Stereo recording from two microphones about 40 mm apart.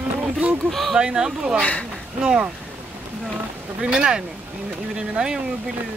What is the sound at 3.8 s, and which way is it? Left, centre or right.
Speech, right.